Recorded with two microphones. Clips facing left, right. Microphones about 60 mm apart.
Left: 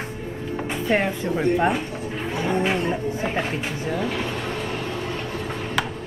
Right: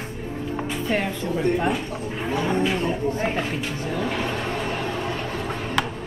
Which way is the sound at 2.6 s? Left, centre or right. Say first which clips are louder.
Left 1 dB; left.